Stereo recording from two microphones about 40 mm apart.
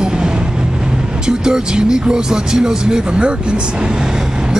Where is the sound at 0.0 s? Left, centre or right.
Right.